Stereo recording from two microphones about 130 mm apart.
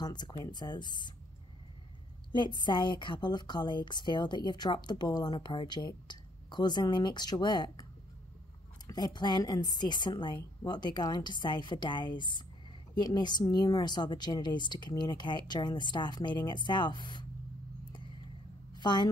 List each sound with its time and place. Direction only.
0.0 s a woman's voice: 35° left (ahead or behind)
2.3 s a woman's voice: 35° left (ahead or behind)
8.8 s a woman's voice: 30° left (ahead or behind)
18.7 s a sound: 35° left (ahead or behind)